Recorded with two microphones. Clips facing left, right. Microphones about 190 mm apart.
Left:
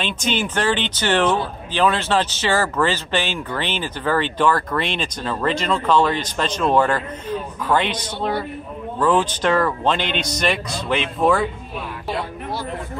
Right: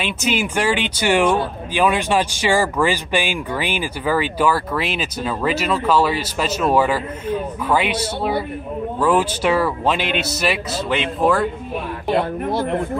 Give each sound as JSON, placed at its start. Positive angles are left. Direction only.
{"t": 0.0, "sound": "speech", "side_deg": -10}
{"t": 12.1, "sound": "speech", "side_deg": -55}